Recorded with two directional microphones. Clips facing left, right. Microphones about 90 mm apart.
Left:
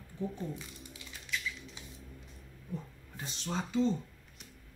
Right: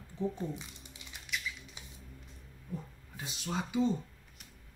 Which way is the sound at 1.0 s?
20° right (ahead or behind).